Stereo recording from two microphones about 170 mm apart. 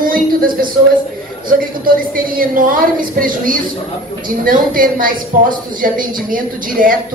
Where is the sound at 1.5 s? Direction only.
55° right (ahead or behind).